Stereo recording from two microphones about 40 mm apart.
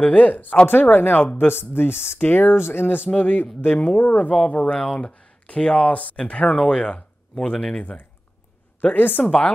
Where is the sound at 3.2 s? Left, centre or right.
Left.